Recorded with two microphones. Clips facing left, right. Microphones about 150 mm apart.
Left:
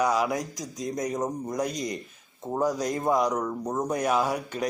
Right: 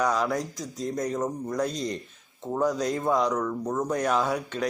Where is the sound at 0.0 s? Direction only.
10° left (ahead or behind).